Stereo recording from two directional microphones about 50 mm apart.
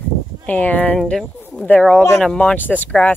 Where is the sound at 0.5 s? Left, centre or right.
Left.